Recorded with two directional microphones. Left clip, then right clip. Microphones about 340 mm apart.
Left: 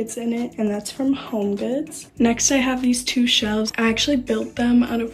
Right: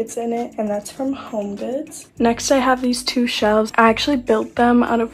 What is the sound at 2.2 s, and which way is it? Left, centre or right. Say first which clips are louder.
Speech: right 3 dB; centre.